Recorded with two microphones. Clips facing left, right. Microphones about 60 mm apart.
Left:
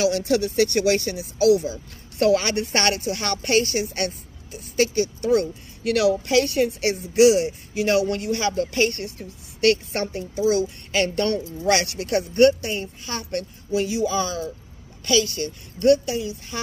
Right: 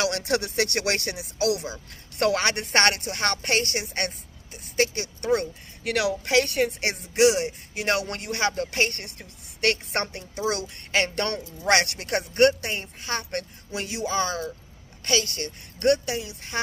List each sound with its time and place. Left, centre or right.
0.0 s speech: right
1.7 s speech: right
9.0 s a man's voice: right